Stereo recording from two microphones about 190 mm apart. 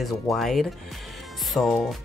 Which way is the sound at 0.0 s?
Centre (ahead or behind).